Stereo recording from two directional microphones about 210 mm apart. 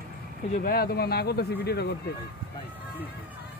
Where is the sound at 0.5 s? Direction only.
45° left (ahead or behind).